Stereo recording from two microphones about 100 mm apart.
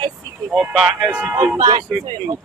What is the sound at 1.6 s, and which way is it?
Speech, 35° right (ahead or behind).